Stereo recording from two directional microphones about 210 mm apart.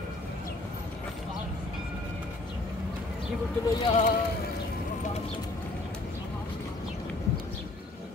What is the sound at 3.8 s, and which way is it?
Speech, 30° left (ahead or behind).